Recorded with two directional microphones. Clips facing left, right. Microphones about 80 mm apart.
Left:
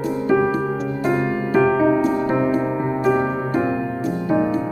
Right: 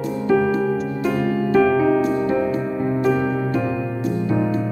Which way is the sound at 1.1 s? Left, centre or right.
Left.